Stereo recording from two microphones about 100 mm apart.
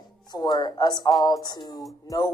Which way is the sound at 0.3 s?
40° left (ahead or behind).